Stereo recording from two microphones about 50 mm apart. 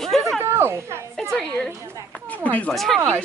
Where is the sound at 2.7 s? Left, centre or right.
Centre.